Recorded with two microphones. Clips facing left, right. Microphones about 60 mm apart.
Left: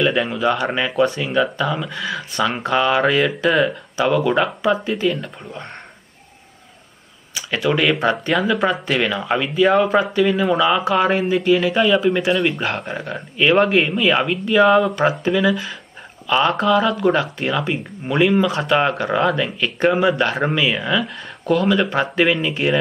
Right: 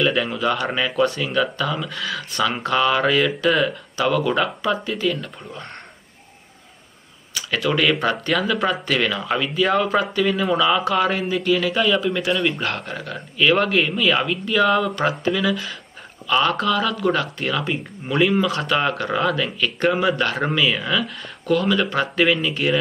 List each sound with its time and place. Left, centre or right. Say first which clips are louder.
0.0 s speech: left 2 dB; centre
7.3 s speech: left 2 dB; centre